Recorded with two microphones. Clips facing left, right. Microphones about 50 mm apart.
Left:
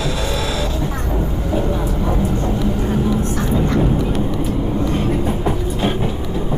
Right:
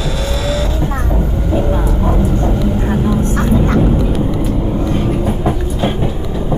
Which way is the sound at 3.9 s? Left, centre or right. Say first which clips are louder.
Right 3 dB; centre.